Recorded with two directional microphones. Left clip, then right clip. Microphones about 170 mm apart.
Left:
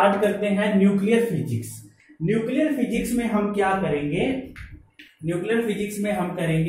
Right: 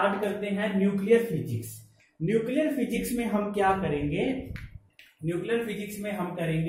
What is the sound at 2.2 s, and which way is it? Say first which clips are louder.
A man's voice: left 3 dB; 50° right (ahead or behind).